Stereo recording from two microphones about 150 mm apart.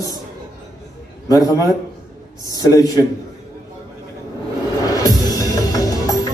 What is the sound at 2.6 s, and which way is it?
Speech, 25° left (ahead or behind).